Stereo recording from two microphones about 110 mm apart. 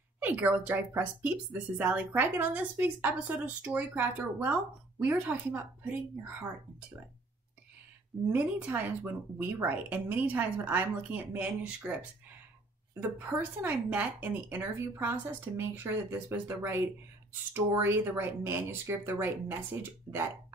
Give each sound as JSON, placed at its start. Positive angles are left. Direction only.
{"t": 0.2, "sound": "speech", "side_deg": -15}
{"t": 8.3, "sound": "speech", "side_deg": -15}
{"t": 13.0, "sound": "speech", "side_deg": -15}